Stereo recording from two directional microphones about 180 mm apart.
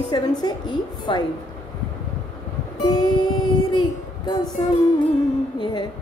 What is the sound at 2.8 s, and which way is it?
Speech, 25° left (ahead or behind).